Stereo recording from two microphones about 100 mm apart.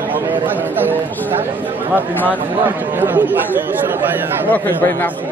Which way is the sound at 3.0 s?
20° right (ahead or behind).